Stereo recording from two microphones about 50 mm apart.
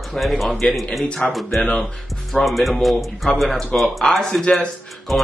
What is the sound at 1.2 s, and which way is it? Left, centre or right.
Speech, left.